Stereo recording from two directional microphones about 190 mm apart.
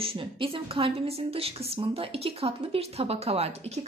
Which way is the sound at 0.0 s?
30° right (ahead or behind).